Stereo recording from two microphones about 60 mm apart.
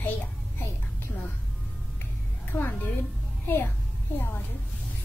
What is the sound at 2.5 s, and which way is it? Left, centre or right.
Speech, left.